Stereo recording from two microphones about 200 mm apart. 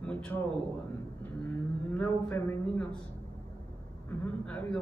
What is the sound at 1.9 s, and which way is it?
A man's voice, 10° left (ahead or behind).